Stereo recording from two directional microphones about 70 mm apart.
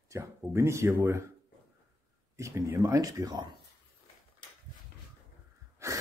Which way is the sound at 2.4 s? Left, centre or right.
Right.